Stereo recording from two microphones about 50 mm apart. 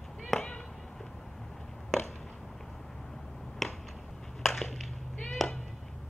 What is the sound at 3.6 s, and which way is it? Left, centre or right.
Finger snapping, centre.